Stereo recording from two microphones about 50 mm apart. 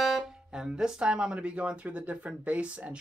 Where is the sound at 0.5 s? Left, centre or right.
Centre.